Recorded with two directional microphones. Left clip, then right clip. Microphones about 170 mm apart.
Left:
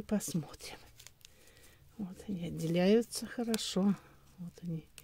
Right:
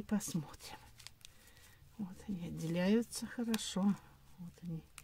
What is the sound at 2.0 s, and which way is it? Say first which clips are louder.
Speech: left 4 dB; 30° left (ahead or behind).